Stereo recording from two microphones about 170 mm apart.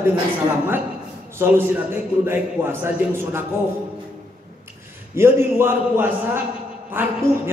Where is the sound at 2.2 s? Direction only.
15° right (ahead or behind).